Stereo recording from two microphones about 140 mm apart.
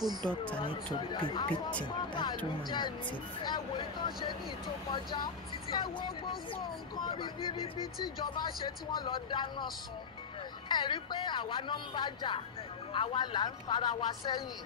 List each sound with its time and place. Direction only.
0.0 s speech: 30° right (ahead or behind)
0.6 s speech: 35° left (ahead or behind)
10.7 s speech: 35° left (ahead or behind)